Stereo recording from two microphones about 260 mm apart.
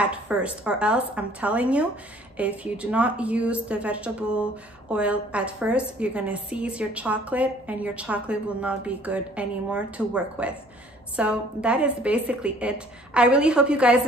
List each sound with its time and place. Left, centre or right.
0.0 s a woman's voice: centre